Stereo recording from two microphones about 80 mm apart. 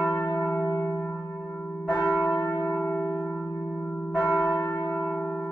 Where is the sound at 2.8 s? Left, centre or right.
Left.